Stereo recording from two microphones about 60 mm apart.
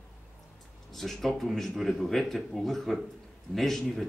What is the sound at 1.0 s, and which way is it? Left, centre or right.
A man's voice, centre.